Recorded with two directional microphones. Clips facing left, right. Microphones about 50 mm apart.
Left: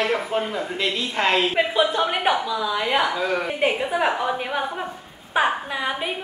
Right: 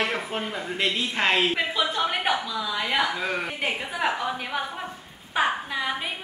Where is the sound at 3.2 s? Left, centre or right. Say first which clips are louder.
Left 5 dB; centre.